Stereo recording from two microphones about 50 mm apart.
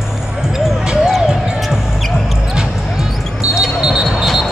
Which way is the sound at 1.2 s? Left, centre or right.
Centre.